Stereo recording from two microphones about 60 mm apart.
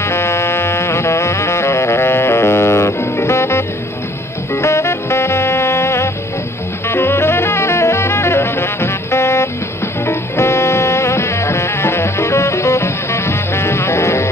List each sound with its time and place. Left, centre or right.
0.0 s music: left